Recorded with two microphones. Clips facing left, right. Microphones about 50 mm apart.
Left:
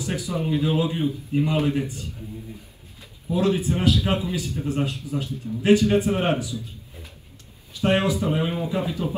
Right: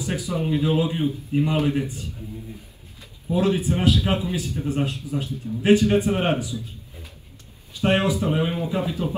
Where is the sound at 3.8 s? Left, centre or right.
Right.